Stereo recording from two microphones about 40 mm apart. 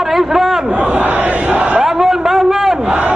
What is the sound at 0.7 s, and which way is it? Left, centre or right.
Crowd, right.